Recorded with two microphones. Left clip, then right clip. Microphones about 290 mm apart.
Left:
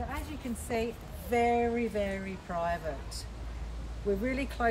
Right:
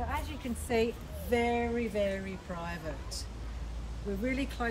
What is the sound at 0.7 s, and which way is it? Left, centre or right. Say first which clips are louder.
Speech: right 3 dB; centre.